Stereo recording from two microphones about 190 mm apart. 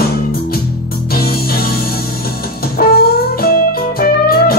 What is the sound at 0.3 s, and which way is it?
Music, 50° left (ahead or behind).